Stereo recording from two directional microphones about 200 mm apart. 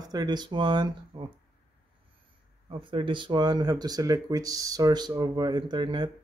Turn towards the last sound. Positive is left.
turn(degrees=-20)  # may be behind; listen again after turning